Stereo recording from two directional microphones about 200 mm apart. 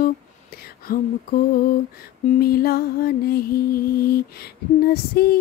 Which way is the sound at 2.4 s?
50° left (ahead or behind).